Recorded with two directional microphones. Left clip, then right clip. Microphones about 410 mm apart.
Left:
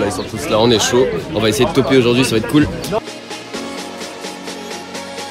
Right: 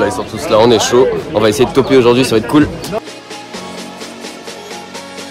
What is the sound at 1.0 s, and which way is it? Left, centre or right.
Speech, centre.